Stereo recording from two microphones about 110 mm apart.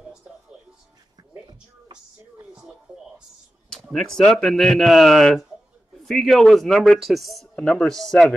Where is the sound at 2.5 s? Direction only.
5° right (ahead or behind).